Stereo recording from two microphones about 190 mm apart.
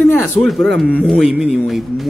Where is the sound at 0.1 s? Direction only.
5° left (ahead or behind).